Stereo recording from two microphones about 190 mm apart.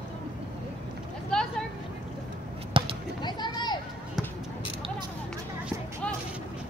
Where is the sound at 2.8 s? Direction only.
25° right (ahead or behind).